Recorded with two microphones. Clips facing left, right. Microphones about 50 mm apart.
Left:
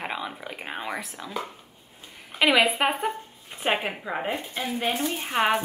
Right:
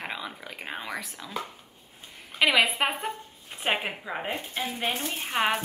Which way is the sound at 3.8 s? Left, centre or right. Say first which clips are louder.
Left 3 dB; centre.